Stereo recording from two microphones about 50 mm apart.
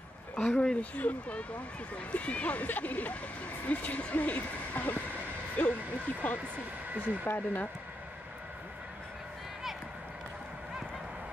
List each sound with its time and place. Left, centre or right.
0.4 s speech: centre
6.2 s speech: left
6.9 s speech: right
7.2 s speech: left